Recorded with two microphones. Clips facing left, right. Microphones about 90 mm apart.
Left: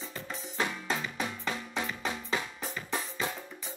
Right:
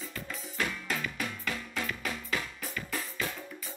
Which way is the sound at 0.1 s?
25° left (ahead or behind).